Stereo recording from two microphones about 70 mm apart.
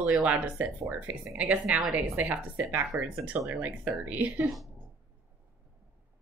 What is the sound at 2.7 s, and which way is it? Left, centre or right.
Speech, right.